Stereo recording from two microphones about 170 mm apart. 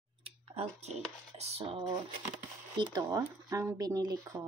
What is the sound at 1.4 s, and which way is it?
Speech, 40° right (ahead or behind).